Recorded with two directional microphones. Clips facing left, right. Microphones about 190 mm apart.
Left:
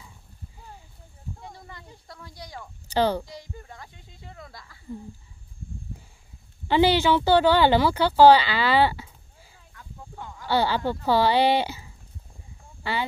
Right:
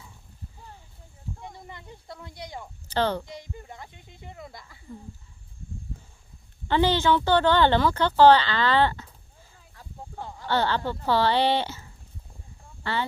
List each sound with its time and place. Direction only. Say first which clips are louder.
1.6 s speech: right 2 dB; 20° right (ahead or behind)
2.9 s a child's voice: left 3 dB; 10° left (ahead or behind)
3.3 s speech: right 1 dB; 20° right (ahead or behind)
6.7 s a woman's voice: left 2 dB; 10° left (ahead or behind)
9.8 s a sound: right 2 dB; 35° right (ahead or behind)
10.4 s a woman's voice: left 2 dB; 10° left (ahead or behind)